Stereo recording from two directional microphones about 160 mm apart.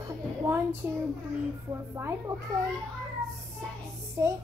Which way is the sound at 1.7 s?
15° right (ahead or behind).